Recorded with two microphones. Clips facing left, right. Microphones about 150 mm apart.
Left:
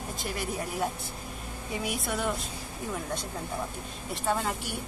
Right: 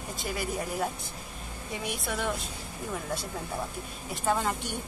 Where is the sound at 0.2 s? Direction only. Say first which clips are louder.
Right 2 dB; centre (ahead or behind).